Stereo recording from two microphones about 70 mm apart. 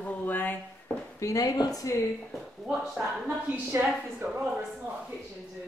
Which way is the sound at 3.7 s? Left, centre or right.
Right.